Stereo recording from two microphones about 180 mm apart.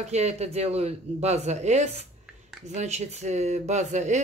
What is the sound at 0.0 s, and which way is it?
Speech, 40° right (ahead or behind).